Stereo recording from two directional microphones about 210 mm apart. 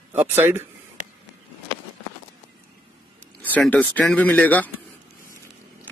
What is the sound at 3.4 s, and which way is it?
Speech, 5° left (ahead or behind).